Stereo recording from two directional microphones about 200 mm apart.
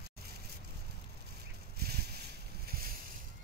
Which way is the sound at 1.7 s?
50° right (ahead or behind).